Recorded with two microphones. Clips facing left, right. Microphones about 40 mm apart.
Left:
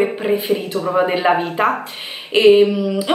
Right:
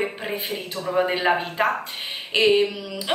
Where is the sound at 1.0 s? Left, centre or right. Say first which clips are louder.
Left 5 dB; centre.